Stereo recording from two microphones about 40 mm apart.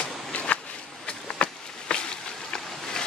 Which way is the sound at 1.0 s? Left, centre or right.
Left.